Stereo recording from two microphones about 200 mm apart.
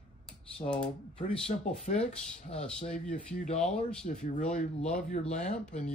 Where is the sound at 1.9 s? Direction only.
35° left (ahead or behind).